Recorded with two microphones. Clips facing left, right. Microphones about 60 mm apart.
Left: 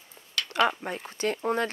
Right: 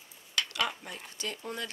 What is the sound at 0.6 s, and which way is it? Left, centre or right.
Speech, left.